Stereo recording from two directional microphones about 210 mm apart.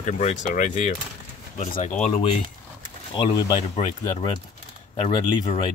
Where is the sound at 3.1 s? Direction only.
20° left (ahead or behind).